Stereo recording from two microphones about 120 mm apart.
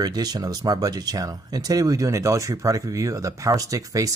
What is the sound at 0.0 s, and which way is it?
Speech, 35° right (ahead or behind).